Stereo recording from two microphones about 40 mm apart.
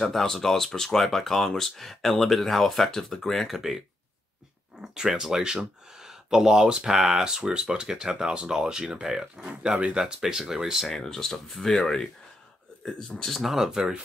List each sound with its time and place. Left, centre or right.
0.1 s speech: centre
4.8 s speech: centre
9.6 s speech: right
10.2 s speech: centre
10.9 s speech: centre
13.3 s speech: centre
13.7 s speech: centre